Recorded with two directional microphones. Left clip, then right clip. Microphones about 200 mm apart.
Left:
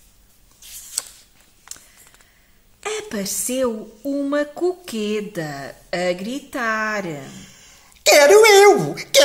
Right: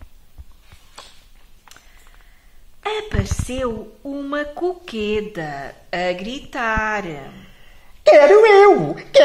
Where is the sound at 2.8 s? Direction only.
55° left (ahead or behind).